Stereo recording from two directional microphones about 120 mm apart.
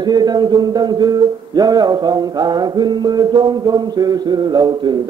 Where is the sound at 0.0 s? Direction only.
35° right (ahead or behind).